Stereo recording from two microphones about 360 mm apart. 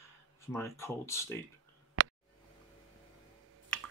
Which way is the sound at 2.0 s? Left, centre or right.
Right.